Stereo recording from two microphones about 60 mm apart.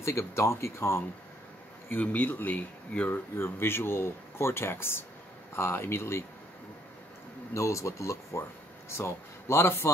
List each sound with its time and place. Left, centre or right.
0.0 s speech: left
1.9 s speech: left
3.1 s speech: left
7.5 s speech: left